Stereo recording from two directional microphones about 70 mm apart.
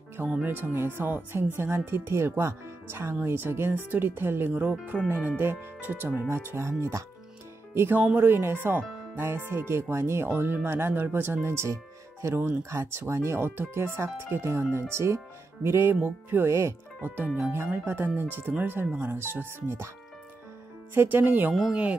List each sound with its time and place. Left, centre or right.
0.4 s speech: right
11.4 s speech: right
17.4 s speech: right
20.9 s speech: right